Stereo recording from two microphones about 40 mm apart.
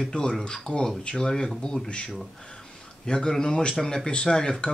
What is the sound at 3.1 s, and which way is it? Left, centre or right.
Speech, centre.